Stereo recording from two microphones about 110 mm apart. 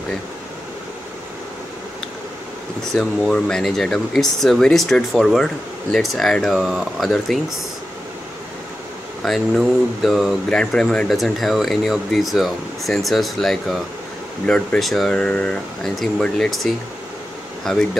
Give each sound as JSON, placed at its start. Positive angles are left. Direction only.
{"t": 2.9, "sound": "speech", "side_deg": 5}
{"t": 9.2, "sound": "speech", "side_deg": 0}